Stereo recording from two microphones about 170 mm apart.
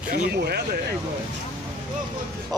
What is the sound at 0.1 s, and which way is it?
Speech, 70° right (ahead or behind).